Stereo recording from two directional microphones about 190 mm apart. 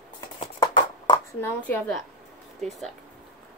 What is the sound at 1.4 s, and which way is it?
A woman's voice, 5° left (ahead or behind).